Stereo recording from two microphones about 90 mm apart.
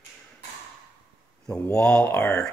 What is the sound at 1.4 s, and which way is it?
Speech, 15° left (ahead or behind).